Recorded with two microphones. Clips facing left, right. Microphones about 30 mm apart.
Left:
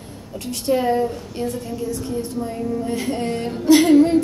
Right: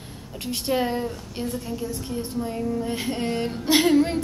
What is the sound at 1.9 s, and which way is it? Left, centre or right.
Speech, right.